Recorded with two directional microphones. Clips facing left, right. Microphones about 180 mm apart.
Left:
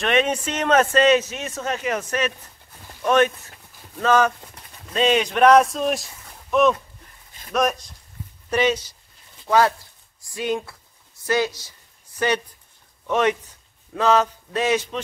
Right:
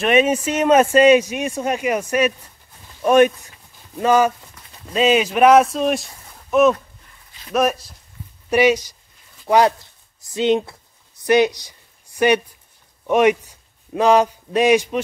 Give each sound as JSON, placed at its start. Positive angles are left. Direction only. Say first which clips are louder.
{"t": 0.0, "sound": "a man's voice", "louder": "right 5 dB", "side_deg": -5}
{"t": 7.5, "sound": "a man's voice", "louder": "right 3 dB", "side_deg": -5}